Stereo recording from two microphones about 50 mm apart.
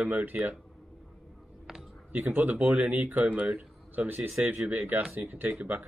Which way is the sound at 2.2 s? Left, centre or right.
Right.